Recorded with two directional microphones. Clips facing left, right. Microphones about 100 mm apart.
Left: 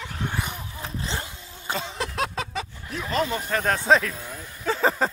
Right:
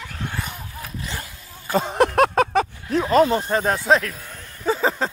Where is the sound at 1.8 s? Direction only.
55° right (ahead or behind).